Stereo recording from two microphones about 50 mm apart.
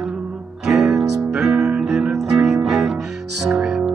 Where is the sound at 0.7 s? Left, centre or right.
Centre.